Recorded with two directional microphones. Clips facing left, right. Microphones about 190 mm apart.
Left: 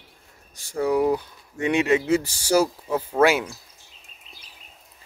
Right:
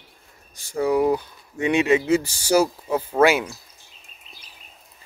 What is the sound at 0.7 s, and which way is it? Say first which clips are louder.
Speech: right 1 dB; 15° right (ahead or behind).